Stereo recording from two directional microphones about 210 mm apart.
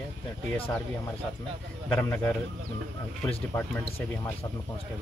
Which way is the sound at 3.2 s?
10° left (ahead or behind).